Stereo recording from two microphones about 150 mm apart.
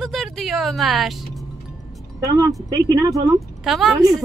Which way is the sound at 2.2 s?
25° right (ahead or behind).